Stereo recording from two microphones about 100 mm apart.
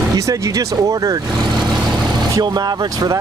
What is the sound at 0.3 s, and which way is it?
Speech, 35° right (ahead or behind).